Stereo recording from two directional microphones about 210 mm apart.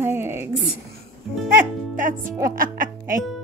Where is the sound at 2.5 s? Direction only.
40° right (ahead or behind).